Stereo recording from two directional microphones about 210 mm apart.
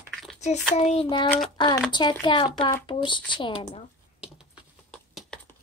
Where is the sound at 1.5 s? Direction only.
20° left (ahead or behind).